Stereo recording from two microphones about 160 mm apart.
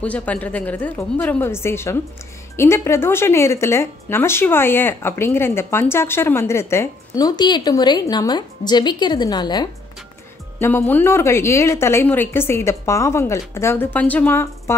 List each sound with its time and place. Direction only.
0.0 s speech: 10° left (ahead or behind); by 9.7 s 25° left (ahead or behind)
10.6 s speech: 10° left (ahead or behind)